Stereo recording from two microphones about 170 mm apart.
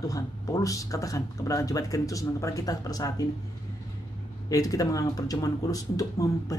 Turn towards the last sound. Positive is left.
turn(degrees=20)  # may be behind; listen again after turning